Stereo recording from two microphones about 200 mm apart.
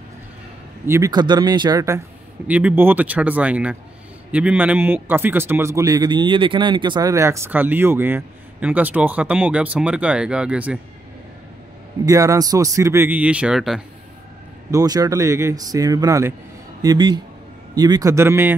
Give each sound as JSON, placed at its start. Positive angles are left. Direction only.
{"t": 0.8, "sound": "speech", "side_deg": -15}
{"t": 2.4, "sound": "a man's voice", "side_deg": -5}
{"t": 12.1, "sound": "a man's voice", "side_deg": -15}
{"t": 14.7, "sound": "a man's voice", "side_deg": -20}